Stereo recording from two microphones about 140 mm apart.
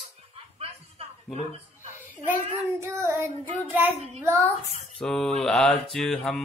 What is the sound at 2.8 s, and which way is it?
Child singing, 15° right (ahead or behind).